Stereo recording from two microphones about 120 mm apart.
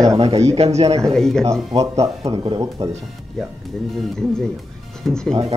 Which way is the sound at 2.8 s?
55° right (ahead or behind).